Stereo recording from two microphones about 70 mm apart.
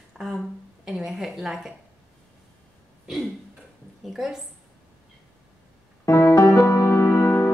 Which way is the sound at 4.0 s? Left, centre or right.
Centre.